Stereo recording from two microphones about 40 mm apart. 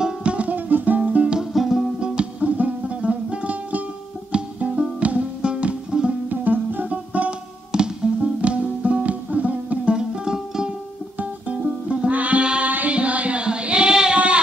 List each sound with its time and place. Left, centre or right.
0.2 s music: right
0.5 s music: right
1.4 s music: centre
2.0 s music: right
2.4 s music: right
6.2 s music: right
6.9 s music: right
7.7 s music: centre
8.4 s music: right
9.9 s music: centre
11.1 s music: right
12.1 s music: right
12.6 s child singing: right